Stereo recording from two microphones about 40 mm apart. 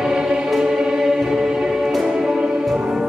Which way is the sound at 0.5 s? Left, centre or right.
Centre.